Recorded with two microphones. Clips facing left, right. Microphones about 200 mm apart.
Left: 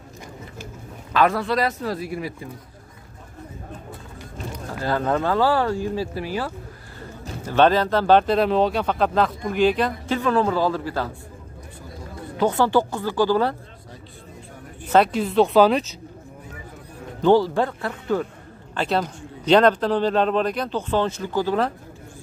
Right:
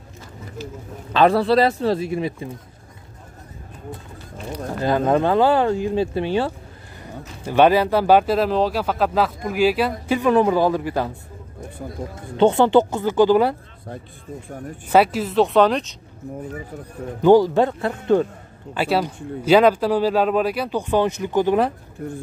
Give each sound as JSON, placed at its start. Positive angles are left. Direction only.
{"t": 1.1, "sound": "speech", "side_deg": -30}
{"t": 4.7, "sound": "speech", "side_deg": -20}
{"t": 7.0, "sound": "speech", "side_deg": -10}
{"t": 12.4, "sound": "speech", "side_deg": -25}
{"t": 14.9, "sound": "speech", "side_deg": -5}
{"t": 17.2, "sound": "speech", "side_deg": -15}
{"t": 18.8, "sound": "speech", "side_deg": -10}